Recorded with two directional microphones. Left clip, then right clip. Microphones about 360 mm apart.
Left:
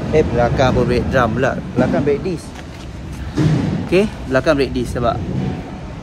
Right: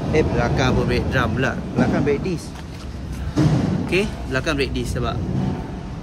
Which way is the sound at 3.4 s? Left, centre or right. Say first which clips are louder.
Left 1 dB; centre.